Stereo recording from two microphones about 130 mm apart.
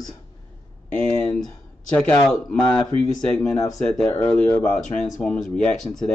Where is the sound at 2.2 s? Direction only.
5° left (ahead or behind).